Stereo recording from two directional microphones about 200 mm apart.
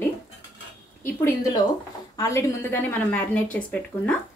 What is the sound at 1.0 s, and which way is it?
A woman's voice, 15° left (ahead or behind).